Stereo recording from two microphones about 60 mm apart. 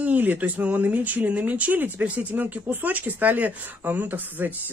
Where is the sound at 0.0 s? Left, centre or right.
Right.